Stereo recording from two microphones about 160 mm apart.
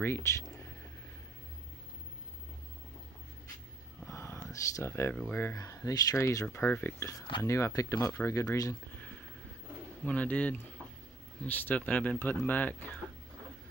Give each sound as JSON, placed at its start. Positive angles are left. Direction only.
{"t": 0.0, "sound": "speech", "side_deg": 15}
{"t": 4.0, "sound": "a sound", "side_deg": 15}
{"t": 5.1, "sound": "speech", "side_deg": 10}
{"t": 10.0, "sound": "speech", "side_deg": 10}